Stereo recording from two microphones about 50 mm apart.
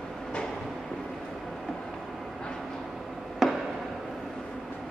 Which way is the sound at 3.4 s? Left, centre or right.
Centre.